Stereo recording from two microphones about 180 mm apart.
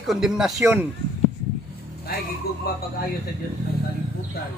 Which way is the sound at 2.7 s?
55° left (ahead or behind).